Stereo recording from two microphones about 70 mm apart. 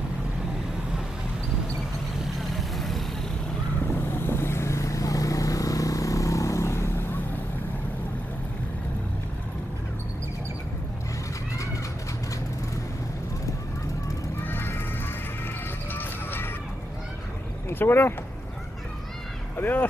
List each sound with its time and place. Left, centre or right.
2.5 s vehicle: centre
4.3 s vehicle: left
14.4 s music: left
15.9 s music: left
17.6 s speech: left
19.5 s speech: left